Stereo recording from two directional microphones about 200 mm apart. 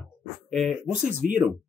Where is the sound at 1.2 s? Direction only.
45° right (ahead or behind).